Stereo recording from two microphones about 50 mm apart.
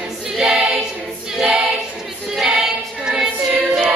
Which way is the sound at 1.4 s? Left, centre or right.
Centre.